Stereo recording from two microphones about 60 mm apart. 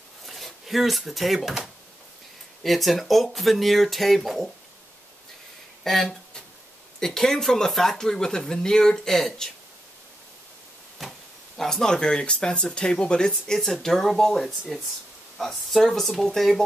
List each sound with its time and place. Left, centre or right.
0.3 s speech: centre
5.9 s speech: centre
11.0 s speech: centre